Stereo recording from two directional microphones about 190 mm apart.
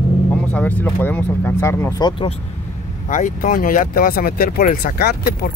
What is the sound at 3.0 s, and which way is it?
Speech, 40° left (ahead or behind).